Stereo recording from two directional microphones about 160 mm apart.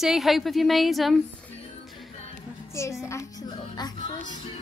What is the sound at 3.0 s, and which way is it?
Music, 20° left (ahead or behind).